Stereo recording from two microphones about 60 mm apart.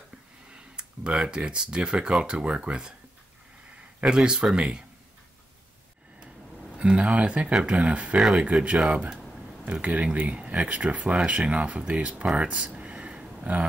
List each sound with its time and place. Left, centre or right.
0.5 s speech: centre
4.0 s speech: centre
6.8 s speech: centre
12.4 s a sound: centre